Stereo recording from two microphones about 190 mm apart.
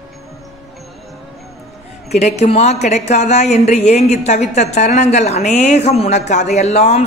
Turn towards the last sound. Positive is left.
turn(degrees=35)  # may be behind; listen again after turning